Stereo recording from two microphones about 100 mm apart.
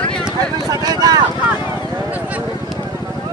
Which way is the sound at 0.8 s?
40° right (ahead or behind).